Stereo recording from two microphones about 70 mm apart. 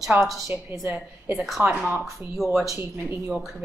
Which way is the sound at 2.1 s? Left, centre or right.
Right.